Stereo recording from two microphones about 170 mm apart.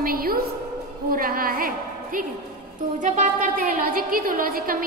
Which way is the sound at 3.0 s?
50° right (ahead or behind).